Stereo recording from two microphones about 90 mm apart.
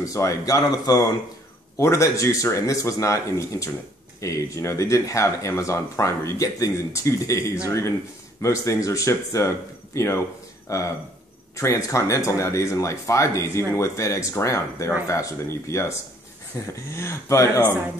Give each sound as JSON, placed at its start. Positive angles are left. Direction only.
{"t": 0.0, "sound": "speech", "side_deg": 35}